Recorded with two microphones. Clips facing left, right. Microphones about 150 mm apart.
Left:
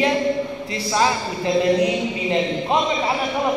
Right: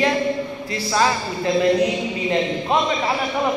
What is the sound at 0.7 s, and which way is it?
Speech, 20° left (ahead or behind).